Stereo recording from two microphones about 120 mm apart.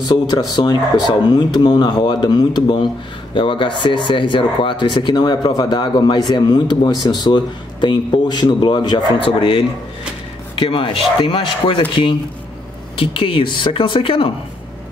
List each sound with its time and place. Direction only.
0.0 s speech: 35° left (ahead or behind)